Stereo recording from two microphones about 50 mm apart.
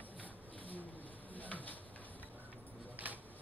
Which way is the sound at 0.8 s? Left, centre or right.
Left.